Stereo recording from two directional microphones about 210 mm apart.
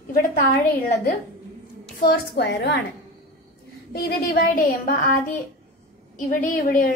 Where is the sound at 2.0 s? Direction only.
55° left (ahead or behind).